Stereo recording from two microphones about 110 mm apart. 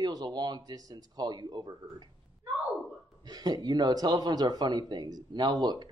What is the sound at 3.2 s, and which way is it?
A man's voice, 35° right (ahead or behind).